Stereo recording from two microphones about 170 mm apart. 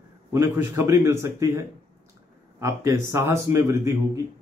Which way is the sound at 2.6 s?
15° right (ahead or behind).